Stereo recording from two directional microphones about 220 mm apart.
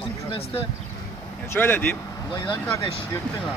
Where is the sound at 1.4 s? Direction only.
10° left (ahead or behind).